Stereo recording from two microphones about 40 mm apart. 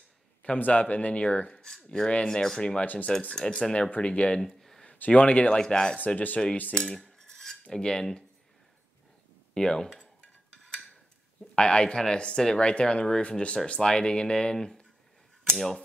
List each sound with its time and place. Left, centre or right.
0.4 s a man's voice: left; by 2.8 s centre
2.8 s speech: left
3.3 s speech: centre
4.0 s speech: left
4.4 s a sound: centre
4.9 s speech: left
5.6 s speech: centre
6.0 s speech: left
6.8 s cutlery: centre
7.7 s speech: centre
9.5 s speech: centre
11.5 s speech: left
13.7 s speech: centre